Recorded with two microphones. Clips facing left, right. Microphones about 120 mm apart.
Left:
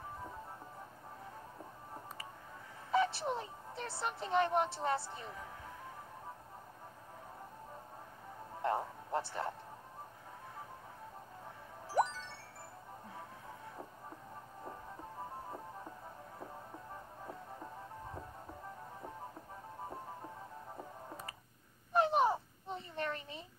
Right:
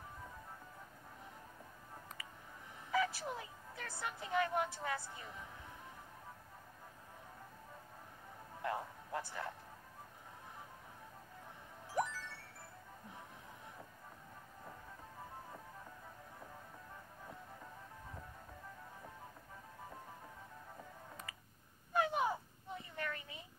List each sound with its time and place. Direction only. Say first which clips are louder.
2.9 s music: left 4 dB; 30° left (ahead or behind)
8.6 s a man's voice: left 5 dB; 30° left (ahead or behind)
11.9 s music: left 5 dB; 30° left (ahead or behind)
20.7 s music: left 5 dB; 35° left (ahead or behind)
21.9 s a sound: left 5 dB; 30° left (ahead or behind)